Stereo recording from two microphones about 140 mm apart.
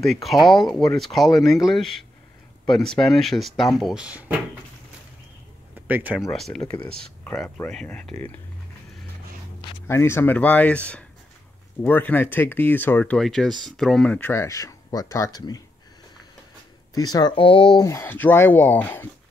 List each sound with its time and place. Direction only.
0.0 s speech: centre (ahead or behind)
5.9 s speech: 10° right (ahead or behind)
6.3 s speech: centre (ahead or behind)
9.8 s speech: 15° left (ahead or behind)
16.9 s speech: 30° left (ahead or behind)
17.8 s speech: 20° left (ahead or behind)